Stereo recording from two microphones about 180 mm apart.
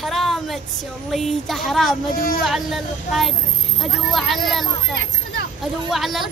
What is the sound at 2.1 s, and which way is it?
Speech, 55° left (ahead or behind).